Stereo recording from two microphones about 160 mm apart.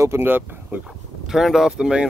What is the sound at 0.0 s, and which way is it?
Speech, 15° right (ahead or behind).